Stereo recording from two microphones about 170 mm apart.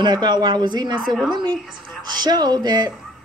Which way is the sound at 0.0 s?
25° right (ahead or behind).